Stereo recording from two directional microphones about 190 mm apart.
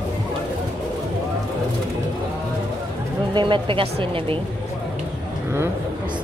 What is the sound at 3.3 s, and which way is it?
A woman's voice, 25° right (ahead or behind).